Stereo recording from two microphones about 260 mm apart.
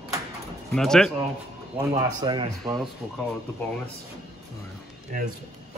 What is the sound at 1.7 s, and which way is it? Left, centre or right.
Speech, centre.